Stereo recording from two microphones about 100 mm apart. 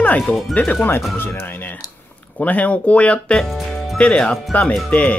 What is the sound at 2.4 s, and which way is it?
Speech, 15° left (ahead or behind).